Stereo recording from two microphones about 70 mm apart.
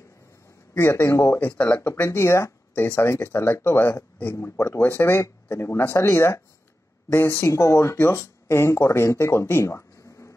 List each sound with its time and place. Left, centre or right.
0.7 s speech: left
7.4 s speech: left